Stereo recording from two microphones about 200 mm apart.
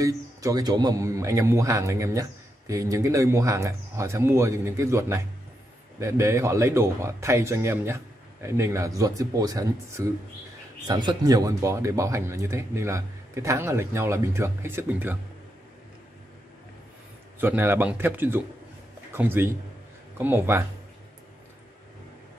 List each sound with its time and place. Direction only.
0.0 s a man's voice: 15° right (ahead or behind)
17.4 s a man's voice: 10° right (ahead or behind)